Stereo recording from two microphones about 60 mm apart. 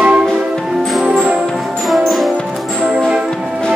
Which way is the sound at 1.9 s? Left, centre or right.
Centre.